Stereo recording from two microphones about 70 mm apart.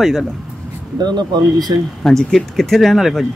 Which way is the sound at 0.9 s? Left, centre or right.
Right.